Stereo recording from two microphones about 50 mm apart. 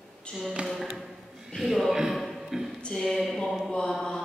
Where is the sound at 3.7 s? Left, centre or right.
Centre.